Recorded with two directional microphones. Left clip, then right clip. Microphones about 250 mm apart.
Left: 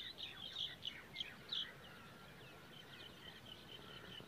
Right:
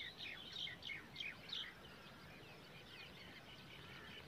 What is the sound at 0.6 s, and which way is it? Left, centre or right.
Bird, right.